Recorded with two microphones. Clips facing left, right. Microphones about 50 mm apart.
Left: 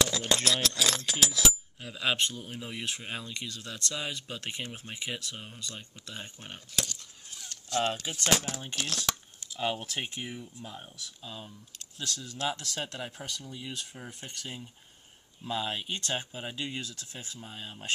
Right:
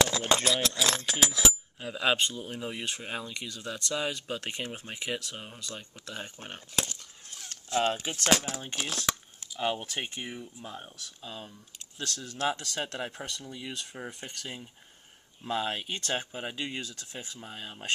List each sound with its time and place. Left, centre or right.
0.0 s a sound: right
0.4 s speech: centre
6.7 s speech: right
13.2 s speech: right
14.4 s speech: centre
15.4 s speech: right
16.3 s speech: right